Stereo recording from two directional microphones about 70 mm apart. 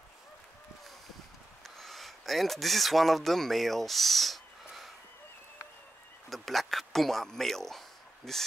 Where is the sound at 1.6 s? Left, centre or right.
Centre.